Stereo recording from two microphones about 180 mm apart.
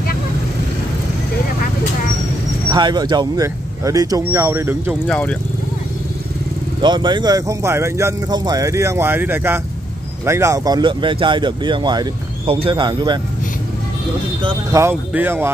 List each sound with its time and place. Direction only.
2.7 s speech: 25° right (ahead or behind)
5.0 s speech: 5° left (ahead or behind)
6.8 s speech: 25° right (ahead or behind)
14.4 s speech: 15° right (ahead or behind)